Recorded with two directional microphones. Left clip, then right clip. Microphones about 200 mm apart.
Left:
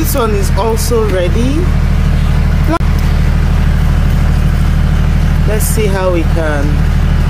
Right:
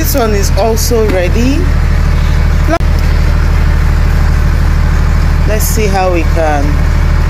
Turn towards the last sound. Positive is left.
turn(degrees=10)  # may be behind; listen again after turning